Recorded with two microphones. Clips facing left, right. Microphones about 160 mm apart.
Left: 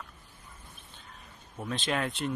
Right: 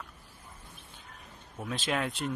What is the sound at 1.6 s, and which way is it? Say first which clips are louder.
Speech: left 1 dB; 5° right (ahead or behind).